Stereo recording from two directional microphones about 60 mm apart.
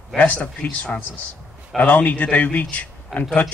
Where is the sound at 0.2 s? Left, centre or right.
Left.